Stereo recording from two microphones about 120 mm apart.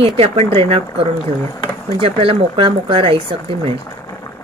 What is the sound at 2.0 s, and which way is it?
Speech, 50° right (ahead or behind).